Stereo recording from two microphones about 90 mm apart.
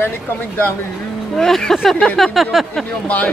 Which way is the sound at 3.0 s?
15° left (ahead or behind).